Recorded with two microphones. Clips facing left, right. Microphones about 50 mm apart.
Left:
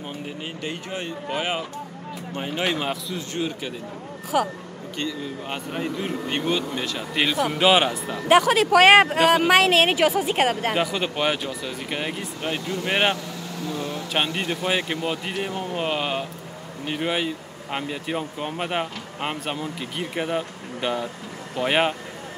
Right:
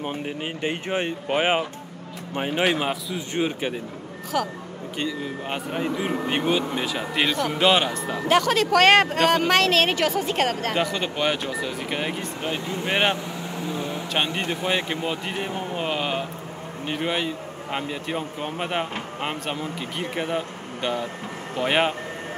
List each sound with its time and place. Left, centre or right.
0.0 s speech: right; by 3.3 s centre
3.3 s speech: right
4.3 s speech: centre
4.9 s speech: centre
7.2 s speech: centre
12.5 s speech: right
12.8 s speech: centre
13.1 s vehicle: right
14.1 s speech: centre
15.8 s a sound: centre
16.8 s speech: centre